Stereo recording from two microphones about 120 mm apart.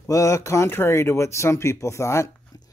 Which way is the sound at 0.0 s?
25° left (ahead or behind).